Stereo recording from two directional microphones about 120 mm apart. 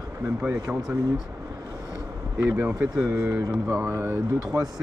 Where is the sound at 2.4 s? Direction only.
15° right (ahead or behind).